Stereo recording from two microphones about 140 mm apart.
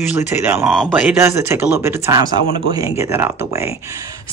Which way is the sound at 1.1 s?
15° right (ahead or behind).